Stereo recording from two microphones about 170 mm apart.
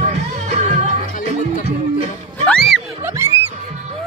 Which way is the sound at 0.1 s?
40° right (ahead or behind).